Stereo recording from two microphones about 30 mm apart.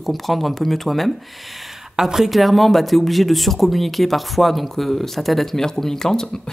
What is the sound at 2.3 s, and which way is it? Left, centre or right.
Speech, centre.